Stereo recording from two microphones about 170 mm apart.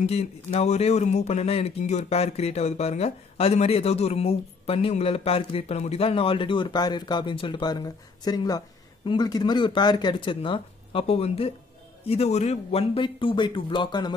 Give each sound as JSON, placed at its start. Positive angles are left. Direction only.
{"t": 0.0, "sound": "speech", "side_deg": 40}